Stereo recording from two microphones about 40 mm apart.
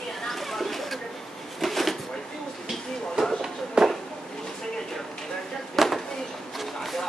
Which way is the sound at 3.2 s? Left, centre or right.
Centre.